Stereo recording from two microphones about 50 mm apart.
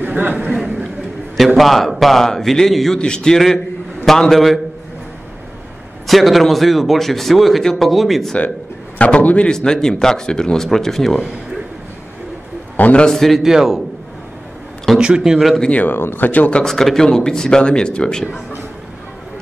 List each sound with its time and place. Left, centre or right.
0.0 s speech: right
1.3 s a man's voice: centre
6.0 s a man's voice: centre
8.9 s a man's voice: left
9.5 s speech: centre
12.8 s speech: left
13.1 s speech: centre
13.4 s a man's voice: centre
15.0 s speech: centre
15.7 s speech: left
16.0 s speech: left
16.3 s speech: left
16.6 s speech: centre